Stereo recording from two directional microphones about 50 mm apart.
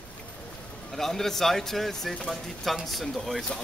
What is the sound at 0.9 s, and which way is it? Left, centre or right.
Speech, centre.